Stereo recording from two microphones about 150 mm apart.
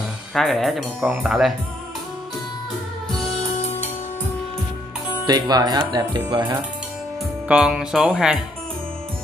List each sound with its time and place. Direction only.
0.3 s speech: centre (ahead or behind)
5.2 s speech: 25° right (ahead or behind)
7.4 s speech: 5° right (ahead or behind)